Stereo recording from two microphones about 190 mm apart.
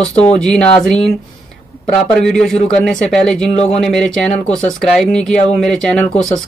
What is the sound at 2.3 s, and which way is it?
Speech, centre (ahead or behind).